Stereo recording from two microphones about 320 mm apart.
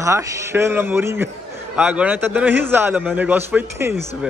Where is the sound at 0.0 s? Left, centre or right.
Centre.